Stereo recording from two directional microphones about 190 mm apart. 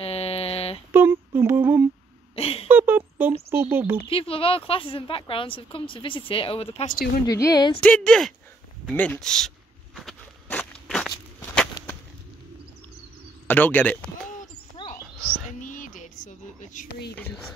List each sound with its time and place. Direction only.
0.0 s a sound: 30° left (ahead or behind)
0.9 s humming: 10° right (ahead or behind)
2.3 s a sound: 30° left (ahead or behind)
2.7 s a sound: 10° right (ahead or behind)
3.5 s speech: 10° right (ahead or behind)
4.1 s a woman's voice: 30° left (ahead or behind)
7.2 s a woman's voice: 20° left (ahead or behind)
7.8 s speech: 5° left (ahead or behind)
9.9 s walk: 5° left (ahead or behind)
13.5 s speech: 10° left (ahead or behind)
14.8 s cricket: 25° left (ahead or behind)
15.6 s a sound: 40° left (ahead or behind)